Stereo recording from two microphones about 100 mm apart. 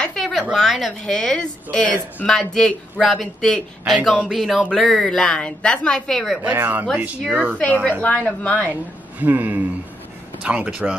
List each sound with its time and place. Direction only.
0.0 s a woman's voice: 5° left (ahead or behind)
6.4 s speech: 20° right (ahead or behind)
8.0 s a woman's voice: 15° left (ahead or behind)
9.2 s speech: 15° right (ahead or behind)